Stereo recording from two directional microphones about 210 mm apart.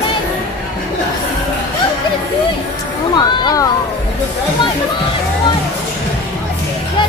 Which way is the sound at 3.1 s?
20° left (ahead or behind).